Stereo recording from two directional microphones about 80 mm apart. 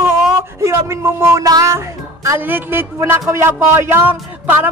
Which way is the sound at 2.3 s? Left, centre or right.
Right.